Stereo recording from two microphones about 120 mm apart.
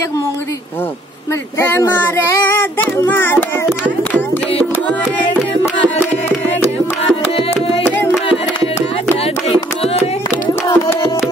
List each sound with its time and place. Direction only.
1.6 s child singing: 20° left (ahead or behind)
10.7 s music: 20° left (ahead or behind)